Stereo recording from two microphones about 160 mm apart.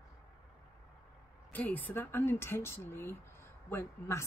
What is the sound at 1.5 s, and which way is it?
Speech, 10° left (ahead or behind).